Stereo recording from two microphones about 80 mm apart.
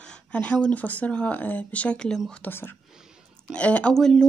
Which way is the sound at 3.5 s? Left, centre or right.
Centre.